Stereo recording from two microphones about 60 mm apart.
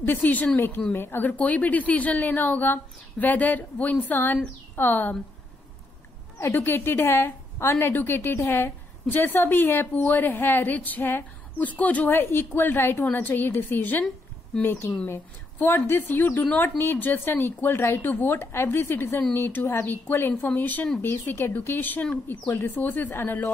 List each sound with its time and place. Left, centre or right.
0.0 s a woman's voice: left
6.5 s a woman's voice: left
22.0 s a woman's voice: centre
23.1 s a woman's voice: left